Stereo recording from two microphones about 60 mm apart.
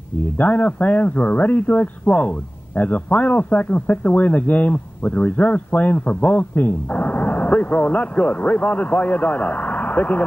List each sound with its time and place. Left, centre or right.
0.4 s speech: left